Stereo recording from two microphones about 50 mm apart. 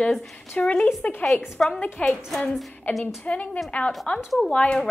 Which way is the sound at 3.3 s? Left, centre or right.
Left.